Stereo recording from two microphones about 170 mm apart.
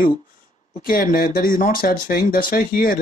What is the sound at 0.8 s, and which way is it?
Speech, 55° left (ahead or behind).